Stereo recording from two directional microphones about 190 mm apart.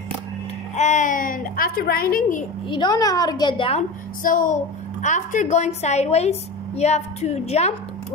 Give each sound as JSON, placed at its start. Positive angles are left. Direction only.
{"t": 0.7, "sound": "speech", "side_deg": 40}
{"t": 2.7, "sound": "a woman's voice", "side_deg": 20}
{"t": 4.2, "sound": "a woman's voice", "side_deg": 45}